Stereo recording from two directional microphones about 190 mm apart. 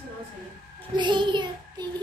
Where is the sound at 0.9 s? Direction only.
25° right (ahead or behind).